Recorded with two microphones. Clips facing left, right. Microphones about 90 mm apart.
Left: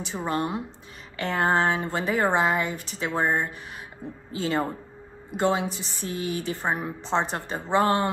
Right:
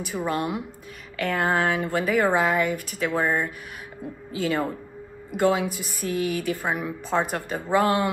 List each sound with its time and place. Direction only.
0.0 s a woman's voice: 25° left (ahead or behind)